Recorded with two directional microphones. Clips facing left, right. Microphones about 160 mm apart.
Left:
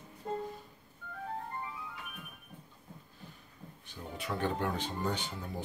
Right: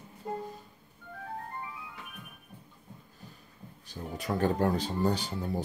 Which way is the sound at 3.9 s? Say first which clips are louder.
Right 5 dB; 40° right (ahead or behind).